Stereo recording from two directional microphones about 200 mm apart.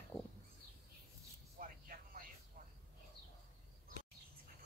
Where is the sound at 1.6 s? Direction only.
45° right (ahead or behind).